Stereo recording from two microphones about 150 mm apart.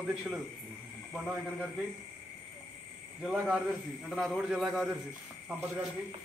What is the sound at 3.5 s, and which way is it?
A man's voice, 5° right (ahead or behind).